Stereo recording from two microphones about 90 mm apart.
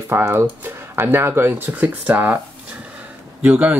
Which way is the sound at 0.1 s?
30° right (ahead or behind).